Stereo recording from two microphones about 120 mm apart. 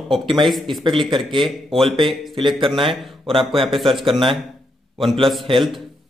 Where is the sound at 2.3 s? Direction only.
45° right (ahead or behind).